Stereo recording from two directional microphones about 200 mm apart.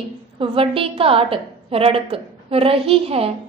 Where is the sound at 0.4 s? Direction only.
30° right (ahead or behind).